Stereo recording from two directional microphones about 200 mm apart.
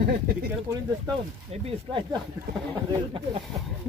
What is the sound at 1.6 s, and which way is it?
Speech, 25° right (ahead or behind).